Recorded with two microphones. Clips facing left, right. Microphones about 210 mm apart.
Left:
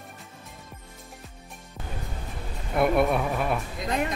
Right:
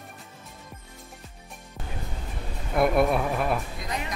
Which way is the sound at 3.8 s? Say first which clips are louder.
Left 9 dB; 50° left (ahead or behind).